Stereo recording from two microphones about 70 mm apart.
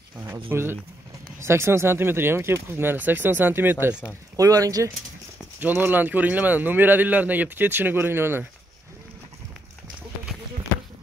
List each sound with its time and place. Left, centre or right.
0.2 s speech: right
4.4 s speech: right
5.6 s a man's voice: right